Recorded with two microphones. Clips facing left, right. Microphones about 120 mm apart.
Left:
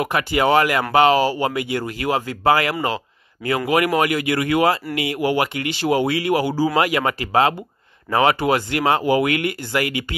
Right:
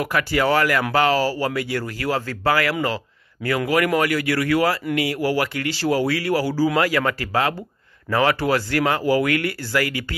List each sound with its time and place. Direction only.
0.0 s speech: 20° left (ahead or behind)